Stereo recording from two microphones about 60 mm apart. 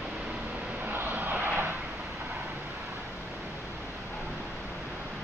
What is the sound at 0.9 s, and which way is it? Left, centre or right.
Vehicle, right.